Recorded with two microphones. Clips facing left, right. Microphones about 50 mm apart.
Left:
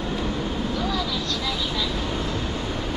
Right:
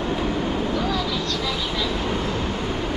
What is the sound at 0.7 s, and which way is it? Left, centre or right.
Vehicle, centre.